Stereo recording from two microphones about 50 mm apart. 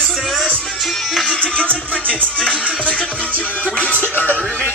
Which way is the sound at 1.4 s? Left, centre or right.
Centre.